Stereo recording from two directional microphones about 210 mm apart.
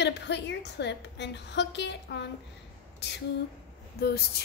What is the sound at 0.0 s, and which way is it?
A woman's voice, 55° left (ahead or behind).